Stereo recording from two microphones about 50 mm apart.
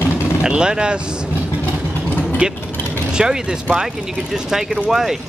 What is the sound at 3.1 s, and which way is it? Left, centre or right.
Speech, centre.